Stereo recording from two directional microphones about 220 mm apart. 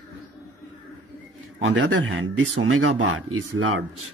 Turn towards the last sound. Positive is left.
turn(degrees=-65)  # may be behind; listen again after turning